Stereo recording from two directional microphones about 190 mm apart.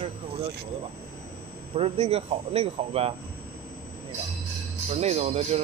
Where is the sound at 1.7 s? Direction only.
30° right (ahead or behind).